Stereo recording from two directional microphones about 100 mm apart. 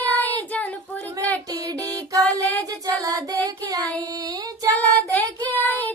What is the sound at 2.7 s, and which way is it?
Child singing, 35° right (ahead or behind).